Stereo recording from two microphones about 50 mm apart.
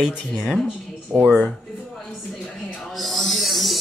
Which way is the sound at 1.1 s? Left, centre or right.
Centre.